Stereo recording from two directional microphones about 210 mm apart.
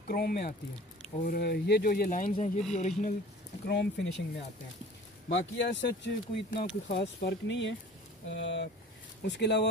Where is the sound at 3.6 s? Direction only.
55° left (ahead or behind).